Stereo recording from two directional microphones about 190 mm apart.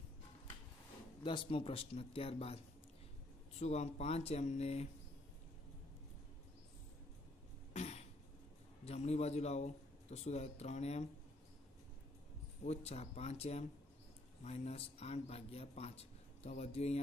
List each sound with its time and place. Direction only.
1.2 s speech: 25° left (ahead or behind)
7.7 s cough: 35° left (ahead or behind)
8.8 s speech: 35° left (ahead or behind)
12.6 s speech: 35° left (ahead or behind)